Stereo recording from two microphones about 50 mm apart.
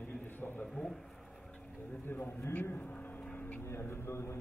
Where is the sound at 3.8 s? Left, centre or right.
Left.